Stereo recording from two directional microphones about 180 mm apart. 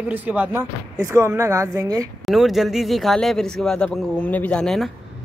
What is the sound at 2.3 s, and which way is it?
Speech, centre (ahead or behind).